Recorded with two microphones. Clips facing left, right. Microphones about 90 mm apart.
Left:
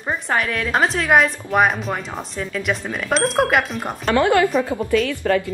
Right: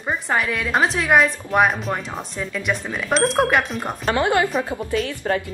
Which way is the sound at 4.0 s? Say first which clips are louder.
Left 3 dB; 25° right (ahead or behind).